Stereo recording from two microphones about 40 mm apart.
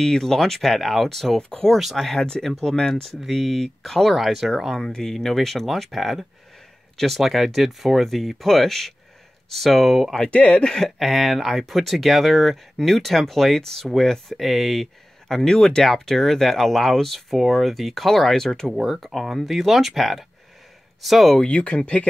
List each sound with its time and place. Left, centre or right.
0.0 s speech: centre
2.1 s speech: centre
3.2 s speech: centre
4.8 s speech: centre
5.1 s speech: centre
10.2 s speech: left
11.0 s speech: centre
14.4 s speech: centre
21.5 s speech: left